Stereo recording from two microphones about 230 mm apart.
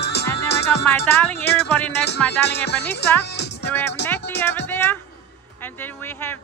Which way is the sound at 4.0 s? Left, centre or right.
Left.